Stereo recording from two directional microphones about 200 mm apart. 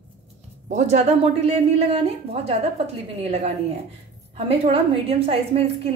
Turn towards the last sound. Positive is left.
turn(degrees=-30)  # may be behind; listen again after turning